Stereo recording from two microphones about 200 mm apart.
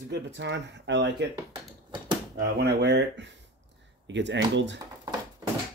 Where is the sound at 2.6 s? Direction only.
55° right (ahead or behind).